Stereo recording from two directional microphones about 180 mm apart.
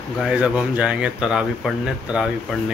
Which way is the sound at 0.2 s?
5° right (ahead or behind).